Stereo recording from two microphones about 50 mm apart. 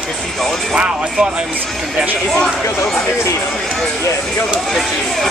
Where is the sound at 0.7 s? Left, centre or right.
Centre.